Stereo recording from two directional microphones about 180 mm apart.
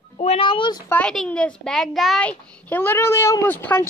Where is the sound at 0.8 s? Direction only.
5° left (ahead or behind).